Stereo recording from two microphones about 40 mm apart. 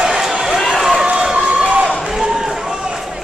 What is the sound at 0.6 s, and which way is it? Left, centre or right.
Run, centre.